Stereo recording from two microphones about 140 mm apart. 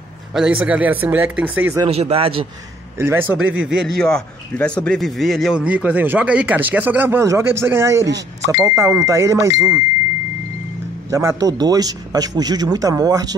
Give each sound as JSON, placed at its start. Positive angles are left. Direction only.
{"t": 0.3, "sound": "a man's voice", "side_deg": -5}
{"t": 1.9, "sound": "a man's voice", "side_deg": -45}
{"t": 3.0, "sound": "a man's voice", "side_deg": -15}
{"t": 11.1, "sound": "a man's voice", "side_deg": -20}